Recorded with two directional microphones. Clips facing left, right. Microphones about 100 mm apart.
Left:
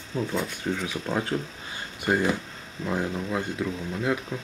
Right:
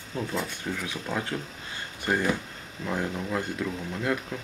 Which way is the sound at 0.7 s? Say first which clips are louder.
Left 5 dB; 15° left (ahead or behind).